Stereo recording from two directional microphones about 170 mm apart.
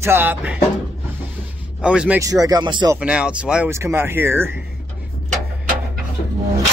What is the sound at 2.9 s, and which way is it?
Speech, 5° right (ahead or behind).